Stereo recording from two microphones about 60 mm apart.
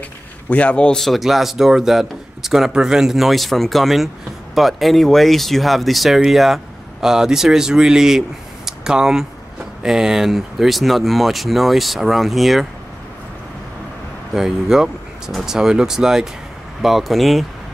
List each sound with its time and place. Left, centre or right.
0.5 s a man's voice: left
1.0 s speech: centre
8.6 s a sound: centre
9.8 s speech: centre
14.3 s speech: centre